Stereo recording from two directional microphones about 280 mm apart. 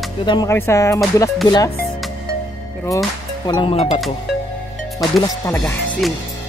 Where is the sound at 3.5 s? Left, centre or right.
Centre.